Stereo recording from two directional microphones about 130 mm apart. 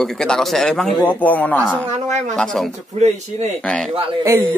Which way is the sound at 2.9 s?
60° right (ahead or behind).